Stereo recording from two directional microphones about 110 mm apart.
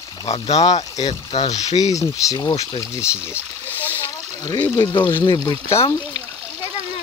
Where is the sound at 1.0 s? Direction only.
65° left (ahead or behind).